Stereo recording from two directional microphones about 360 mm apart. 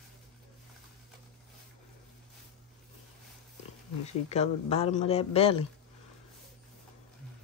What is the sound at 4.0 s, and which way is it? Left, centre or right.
A man's voice, centre.